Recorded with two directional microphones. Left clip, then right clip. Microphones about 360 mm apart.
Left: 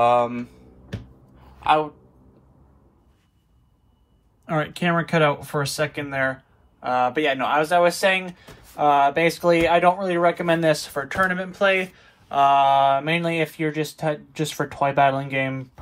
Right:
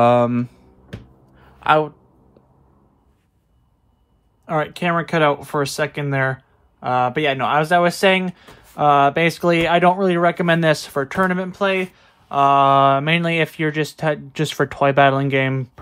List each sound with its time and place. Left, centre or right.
0.0 s speech: right
1.3 s a sound: right
4.5 s speech: centre